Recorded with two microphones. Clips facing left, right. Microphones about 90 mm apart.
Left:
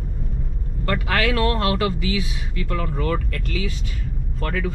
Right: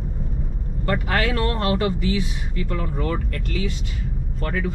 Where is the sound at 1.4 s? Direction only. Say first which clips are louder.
Left 3 dB; 90° left.